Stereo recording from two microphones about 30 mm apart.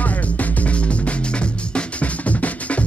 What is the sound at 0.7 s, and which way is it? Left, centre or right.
Music, left.